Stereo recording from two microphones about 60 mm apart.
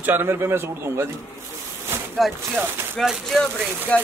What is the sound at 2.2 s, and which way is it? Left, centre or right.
Speech, centre.